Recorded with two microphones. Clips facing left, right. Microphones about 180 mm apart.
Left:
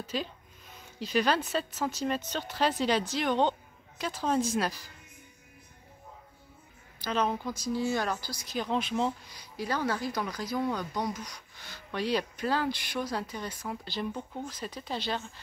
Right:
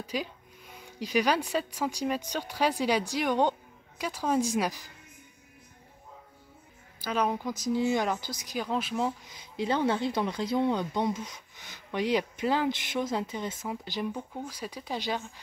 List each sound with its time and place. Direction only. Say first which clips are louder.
0.0 s speech: right 1 dB; 15° right (ahead or behind)
7.0 s speech: right 1 dB; 10° right (ahead or behind)
8.5 s speech: left 1 dB; 5° right (ahead or behind)
9.3 s speech: right 4 dB; 25° right (ahead or behind)